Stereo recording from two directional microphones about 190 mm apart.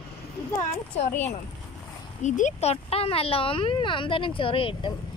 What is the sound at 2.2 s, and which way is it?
Speech, 40° left (ahead or behind).